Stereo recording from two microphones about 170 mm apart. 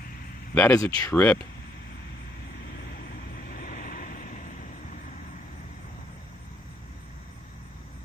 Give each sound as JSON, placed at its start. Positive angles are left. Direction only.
{"t": 0.6, "sound": "speech", "side_deg": 15}
{"t": 3.4, "sound": "vehicle", "side_deg": 60}